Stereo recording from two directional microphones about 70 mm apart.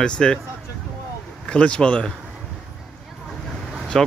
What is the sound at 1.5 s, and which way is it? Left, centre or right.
Speech, centre.